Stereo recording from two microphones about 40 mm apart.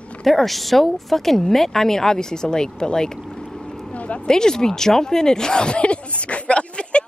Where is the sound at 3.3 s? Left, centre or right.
Centre.